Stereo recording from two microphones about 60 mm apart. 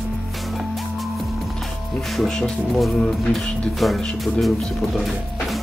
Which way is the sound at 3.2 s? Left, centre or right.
Centre.